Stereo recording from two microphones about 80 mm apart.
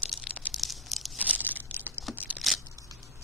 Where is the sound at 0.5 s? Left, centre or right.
Centre.